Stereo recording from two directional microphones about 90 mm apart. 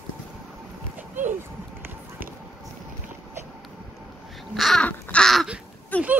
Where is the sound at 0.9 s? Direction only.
20° right (ahead or behind).